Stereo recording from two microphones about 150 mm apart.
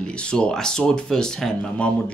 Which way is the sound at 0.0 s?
5° left (ahead or behind).